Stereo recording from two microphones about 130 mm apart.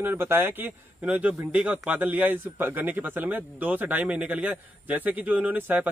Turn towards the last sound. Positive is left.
turn(degrees=-15)  # may be behind; listen again after turning